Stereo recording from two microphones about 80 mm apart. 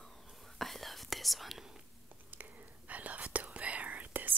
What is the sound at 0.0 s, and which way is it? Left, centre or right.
Whispering, centre.